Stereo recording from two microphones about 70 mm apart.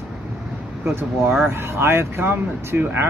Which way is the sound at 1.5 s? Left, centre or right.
Right.